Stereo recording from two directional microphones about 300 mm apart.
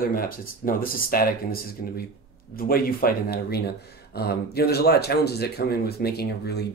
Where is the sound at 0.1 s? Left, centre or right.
Left.